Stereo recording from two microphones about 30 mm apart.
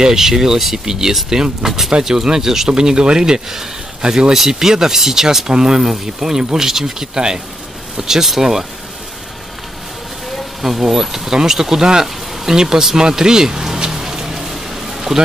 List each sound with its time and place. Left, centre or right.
0.0 s speech: centre
7.2 s speech: right
10.6 s speech: centre
13.8 s a sound: centre
14.5 s music: centre